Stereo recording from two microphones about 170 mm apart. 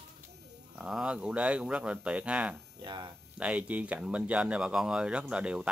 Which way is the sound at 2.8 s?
25° right (ahead or behind).